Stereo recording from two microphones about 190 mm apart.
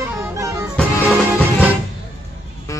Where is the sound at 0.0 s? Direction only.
15° right (ahead or behind).